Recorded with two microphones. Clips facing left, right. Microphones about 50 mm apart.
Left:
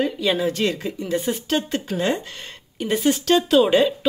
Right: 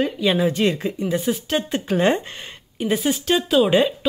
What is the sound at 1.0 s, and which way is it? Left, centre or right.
Speech, centre.